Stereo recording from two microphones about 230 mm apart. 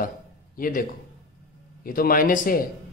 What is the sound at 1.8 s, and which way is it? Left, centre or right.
Speech, left.